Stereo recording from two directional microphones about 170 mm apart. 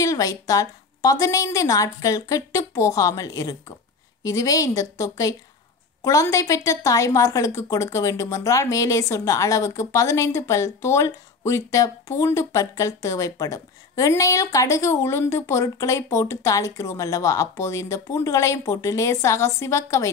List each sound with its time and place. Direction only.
0.0 s a woman's voice: 20° left (ahead or behind)